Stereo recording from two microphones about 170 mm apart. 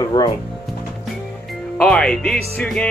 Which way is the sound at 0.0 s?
25° left (ahead or behind).